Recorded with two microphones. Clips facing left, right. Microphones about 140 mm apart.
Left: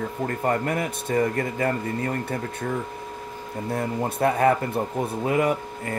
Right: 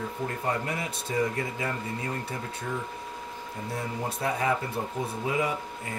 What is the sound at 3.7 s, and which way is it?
Speech, 55° left (ahead or behind).